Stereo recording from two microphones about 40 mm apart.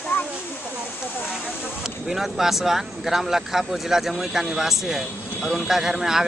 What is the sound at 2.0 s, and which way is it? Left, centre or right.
A man's voice, centre.